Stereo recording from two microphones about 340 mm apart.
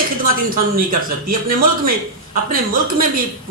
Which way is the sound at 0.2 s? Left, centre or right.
Right.